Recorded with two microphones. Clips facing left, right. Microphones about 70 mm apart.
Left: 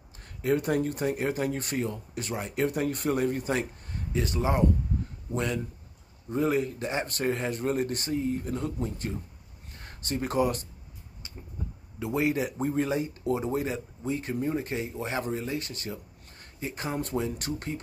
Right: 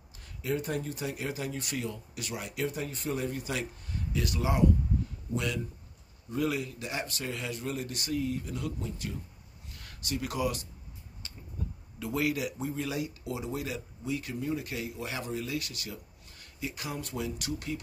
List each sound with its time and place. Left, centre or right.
0.2 s speech: left
2.7 s speech: left
11.2 s a sound: left
12.0 s speech: left